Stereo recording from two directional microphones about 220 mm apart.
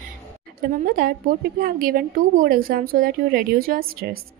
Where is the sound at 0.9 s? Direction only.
45° right (ahead or behind).